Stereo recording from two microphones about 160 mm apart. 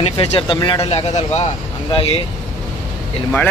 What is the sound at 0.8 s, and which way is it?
Speech, 45° left (ahead or behind).